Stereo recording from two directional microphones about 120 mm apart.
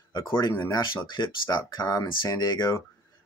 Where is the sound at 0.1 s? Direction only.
35° left (ahead or behind).